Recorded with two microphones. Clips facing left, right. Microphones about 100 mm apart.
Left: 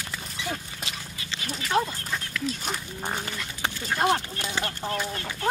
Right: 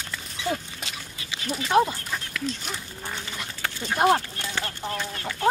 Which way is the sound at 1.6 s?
20° right (ahead or behind).